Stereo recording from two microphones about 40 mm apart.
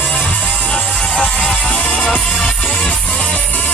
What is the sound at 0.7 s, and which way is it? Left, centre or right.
Music, left.